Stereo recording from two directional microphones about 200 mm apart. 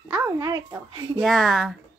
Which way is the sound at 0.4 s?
20° right (ahead or behind).